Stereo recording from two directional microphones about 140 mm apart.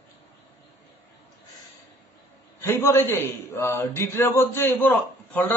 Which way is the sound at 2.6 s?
15° left (ahead or behind).